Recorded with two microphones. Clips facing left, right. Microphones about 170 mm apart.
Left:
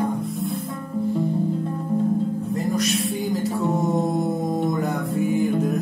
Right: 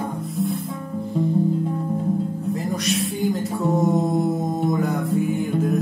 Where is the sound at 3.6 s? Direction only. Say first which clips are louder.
Right 4 dB; centre (ahead or behind).